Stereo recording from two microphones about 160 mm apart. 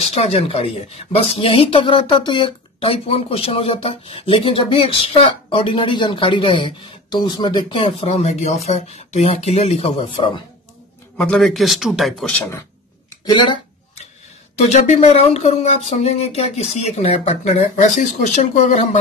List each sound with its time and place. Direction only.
0.0 s speech: 40° left (ahead or behind)
11.1 s a man's voice: 5° left (ahead or behind)
13.2 s a sound: 30° left (ahead or behind)
14.6 s speech: 45° left (ahead or behind)